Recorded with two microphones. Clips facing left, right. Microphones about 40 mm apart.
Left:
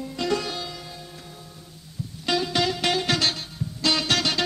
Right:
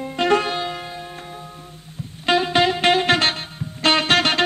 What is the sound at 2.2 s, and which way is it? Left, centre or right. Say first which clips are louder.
Music: right 7 dB; right.